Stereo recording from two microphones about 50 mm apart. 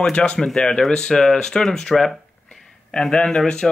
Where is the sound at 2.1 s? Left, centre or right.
Centre.